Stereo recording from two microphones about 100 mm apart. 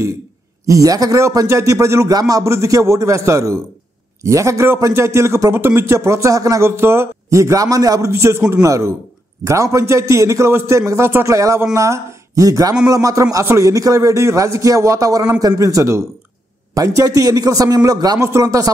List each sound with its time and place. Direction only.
0.7 s a man's voice: 35° right (ahead or behind)